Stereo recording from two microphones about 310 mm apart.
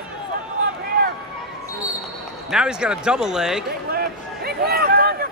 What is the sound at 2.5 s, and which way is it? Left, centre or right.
Speech, centre.